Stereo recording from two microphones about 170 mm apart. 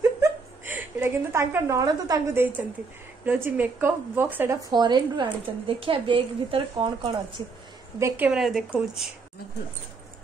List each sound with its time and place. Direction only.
0.0 s a woman's voice: 15° right (ahead or behind); by 7.4 s 30° right (ahead or behind)
8.0 s speech: 5° right (ahead or behind)